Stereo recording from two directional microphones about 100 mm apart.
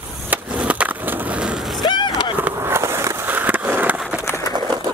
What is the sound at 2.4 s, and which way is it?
Skateboard, 25° right (ahead or behind).